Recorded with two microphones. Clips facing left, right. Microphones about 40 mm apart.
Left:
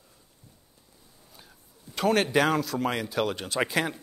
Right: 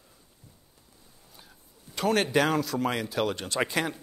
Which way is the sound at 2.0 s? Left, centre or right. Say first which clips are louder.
Left 1 dB; centre.